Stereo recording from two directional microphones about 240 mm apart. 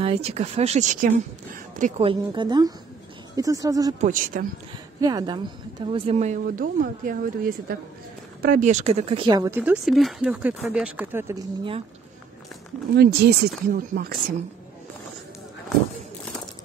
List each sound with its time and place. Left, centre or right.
0.0 s speech: right
4.0 s speech: right
5.0 s speech: centre
12.9 s speech: right